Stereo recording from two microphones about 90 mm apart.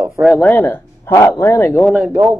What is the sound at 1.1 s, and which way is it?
Speech, 35° left (ahead or behind).